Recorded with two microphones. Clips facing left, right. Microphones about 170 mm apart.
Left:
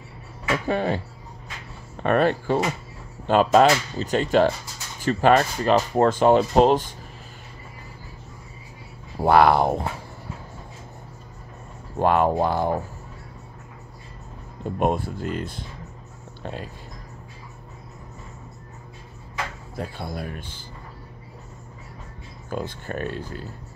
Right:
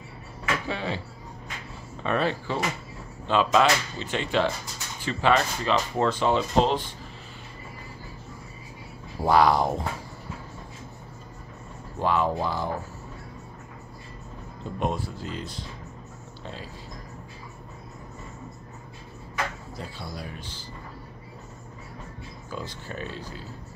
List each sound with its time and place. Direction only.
0.7 s speech: 50° left (ahead or behind)
2.0 s speech: 55° left (ahead or behind)
9.2 s speech: 60° left (ahead or behind)
12.0 s speech: 55° left (ahead or behind)
14.8 s speech: 55° left (ahead or behind)
19.8 s speech: 55° left (ahead or behind)
22.5 s speech: 55° left (ahead or behind)